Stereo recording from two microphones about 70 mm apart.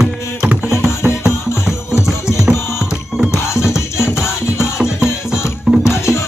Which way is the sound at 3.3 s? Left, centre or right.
Left.